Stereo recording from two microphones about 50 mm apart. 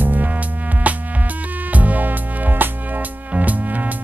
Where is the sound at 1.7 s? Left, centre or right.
Right.